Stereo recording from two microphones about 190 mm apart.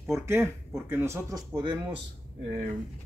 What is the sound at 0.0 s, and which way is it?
Speech, 15° right (ahead or behind).